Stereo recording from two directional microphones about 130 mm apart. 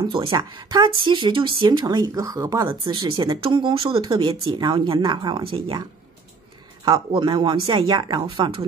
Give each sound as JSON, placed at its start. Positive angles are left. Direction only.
{"t": 0.1, "sound": "speech", "side_deg": -40}
{"t": 2.8, "sound": "speech", "side_deg": -35}